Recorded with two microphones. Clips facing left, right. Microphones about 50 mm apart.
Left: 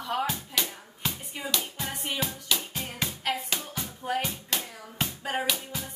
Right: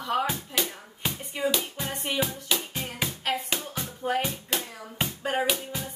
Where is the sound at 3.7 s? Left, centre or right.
Centre.